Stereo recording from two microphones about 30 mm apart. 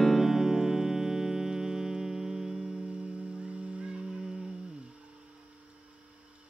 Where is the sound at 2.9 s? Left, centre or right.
Right.